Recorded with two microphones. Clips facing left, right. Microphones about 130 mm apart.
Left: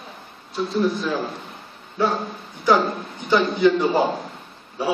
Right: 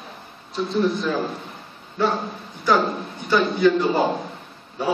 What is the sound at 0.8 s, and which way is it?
Speech, centre (ahead or behind).